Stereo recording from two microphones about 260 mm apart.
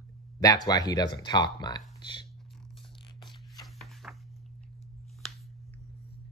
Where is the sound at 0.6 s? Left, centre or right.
Centre.